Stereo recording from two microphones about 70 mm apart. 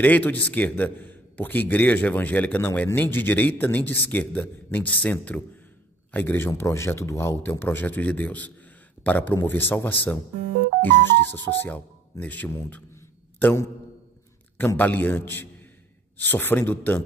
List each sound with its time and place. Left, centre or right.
0.0 s a man's voice: left
12.4 s a man's voice: left
14.8 s a man's voice: left